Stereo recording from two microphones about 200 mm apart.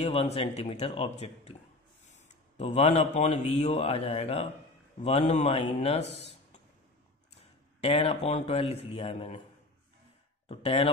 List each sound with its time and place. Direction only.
0.0 s a man's voice: 30° left (ahead or behind)
6.1 s a sound: 30° left (ahead or behind)
7.8 s a man's voice: 30° left (ahead or behind)
10.5 s a man's voice: 30° left (ahead or behind)